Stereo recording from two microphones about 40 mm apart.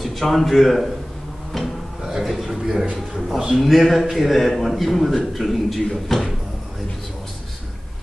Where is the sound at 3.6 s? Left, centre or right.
Centre.